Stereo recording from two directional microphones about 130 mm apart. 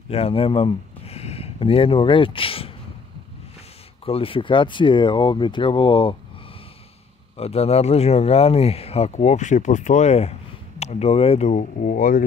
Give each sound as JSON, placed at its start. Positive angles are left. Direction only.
{"t": 0.1, "sound": "speech", "side_deg": 45}
{"t": 4.0, "sound": "speech", "side_deg": 45}
{"t": 7.3, "sound": "speech", "side_deg": 50}